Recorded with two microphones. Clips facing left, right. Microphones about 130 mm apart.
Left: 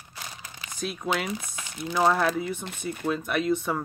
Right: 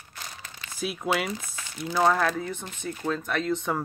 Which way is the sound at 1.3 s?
20° left (ahead or behind).